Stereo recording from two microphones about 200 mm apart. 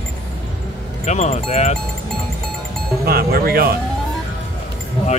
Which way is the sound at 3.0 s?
50° right (ahead or behind).